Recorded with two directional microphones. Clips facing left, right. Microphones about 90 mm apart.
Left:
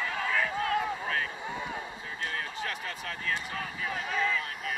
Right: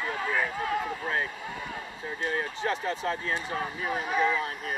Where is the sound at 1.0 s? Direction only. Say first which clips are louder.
Right 2 dB; 25° right (ahead or behind).